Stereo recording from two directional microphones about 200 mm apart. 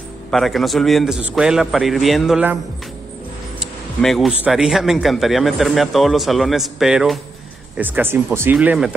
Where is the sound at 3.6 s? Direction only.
Centre (ahead or behind).